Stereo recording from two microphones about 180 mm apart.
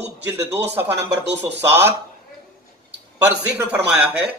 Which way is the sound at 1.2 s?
70° right (ahead or behind).